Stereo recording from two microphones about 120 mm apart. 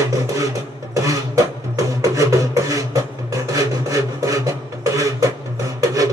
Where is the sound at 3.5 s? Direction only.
30° right (ahead or behind).